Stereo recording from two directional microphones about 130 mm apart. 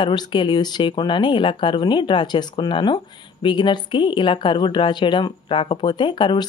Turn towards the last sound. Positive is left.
turn(degrees=35)  # may be behind; listen again after turning